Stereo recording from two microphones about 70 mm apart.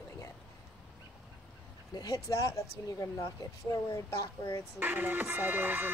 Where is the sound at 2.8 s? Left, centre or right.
Left.